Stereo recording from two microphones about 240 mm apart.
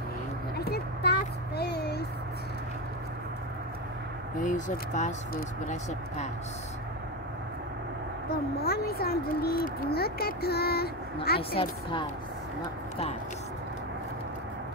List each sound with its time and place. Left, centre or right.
0.6 s a sound: left
4.4 s speech: left
8.3 s speech: left
11.5 s a woman's voice: left